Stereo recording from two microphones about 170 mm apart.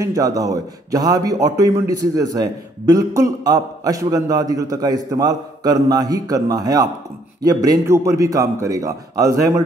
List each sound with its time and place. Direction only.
0.0 s a man's voice: 20° right (ahead or behind)